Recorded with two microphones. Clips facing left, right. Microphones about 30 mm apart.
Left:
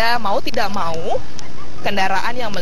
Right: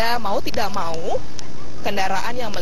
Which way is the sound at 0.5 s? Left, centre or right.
Centre.